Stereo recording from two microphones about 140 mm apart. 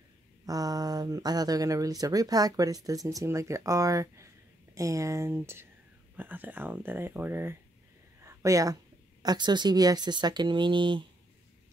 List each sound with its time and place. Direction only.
0.5 s speech: 25° right (ahead or behind)
8.2 s a sound: 20° right (ahead or behind)
9.2 s speech: 30° right (ahead or behind)